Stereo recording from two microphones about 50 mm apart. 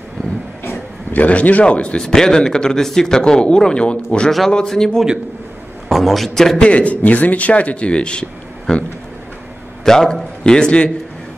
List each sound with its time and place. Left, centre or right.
1.1 s speech: left; by 5.0 s centre
5.9 s a man's voice: centre
6.6 s speech: left
9.8 s speech: centre